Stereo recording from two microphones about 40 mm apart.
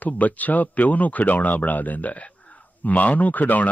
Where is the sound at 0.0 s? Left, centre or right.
Left.